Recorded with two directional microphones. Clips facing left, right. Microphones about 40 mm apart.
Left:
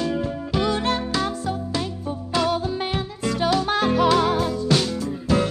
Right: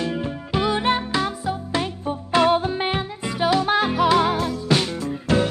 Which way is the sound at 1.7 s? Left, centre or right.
Right.